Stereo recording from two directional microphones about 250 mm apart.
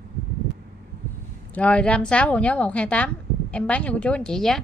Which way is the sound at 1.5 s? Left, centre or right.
Centre.